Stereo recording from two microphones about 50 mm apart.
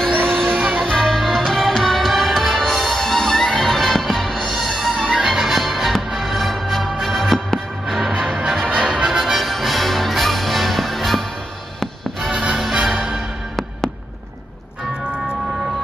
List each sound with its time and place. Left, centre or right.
0.0 s music: centre
12.3 s music: centre